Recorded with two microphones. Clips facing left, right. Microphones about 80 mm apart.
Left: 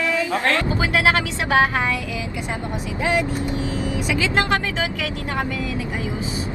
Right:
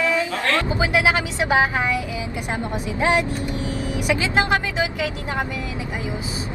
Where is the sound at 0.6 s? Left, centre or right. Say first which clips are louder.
Even; right.